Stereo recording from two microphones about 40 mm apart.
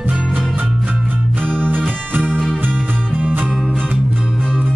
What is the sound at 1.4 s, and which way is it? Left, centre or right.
Music, right.